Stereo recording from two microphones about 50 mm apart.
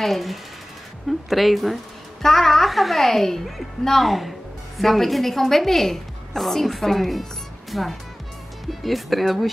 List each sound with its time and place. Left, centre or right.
0.0 s a woman's voice: centre